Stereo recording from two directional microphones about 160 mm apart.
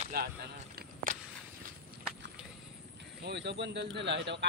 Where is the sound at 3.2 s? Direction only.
90° right.